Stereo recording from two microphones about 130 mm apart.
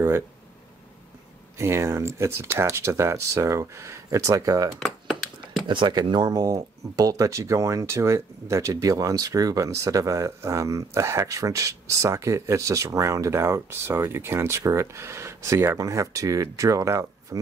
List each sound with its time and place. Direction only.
1.6 s speech: 20° right (ahead or behind)
5.7 s speech: 35° right (ahead or behind)